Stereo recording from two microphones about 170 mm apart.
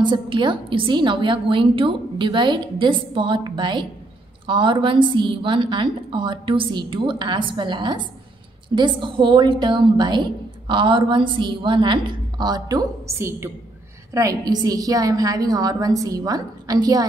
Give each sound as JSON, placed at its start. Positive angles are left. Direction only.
{"t": 0.0, "sound": "a woman's voice", "side_deg": -30}